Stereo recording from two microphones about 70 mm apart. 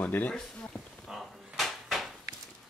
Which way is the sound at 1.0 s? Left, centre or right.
Centre.